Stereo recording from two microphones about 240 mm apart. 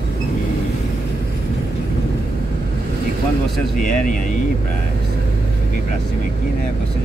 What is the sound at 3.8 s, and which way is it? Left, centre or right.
Speech, left.